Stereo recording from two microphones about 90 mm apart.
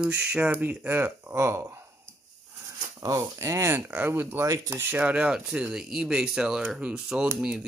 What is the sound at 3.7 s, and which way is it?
Speech, 20° right (ahead or behind).